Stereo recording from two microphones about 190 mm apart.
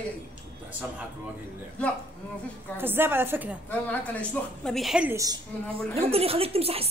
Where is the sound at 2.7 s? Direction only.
10° right (ahead or behind).